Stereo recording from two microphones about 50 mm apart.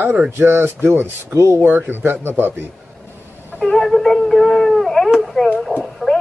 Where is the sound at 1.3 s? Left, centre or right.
Right.